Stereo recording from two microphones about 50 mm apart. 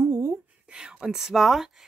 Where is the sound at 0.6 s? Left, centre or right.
Centre.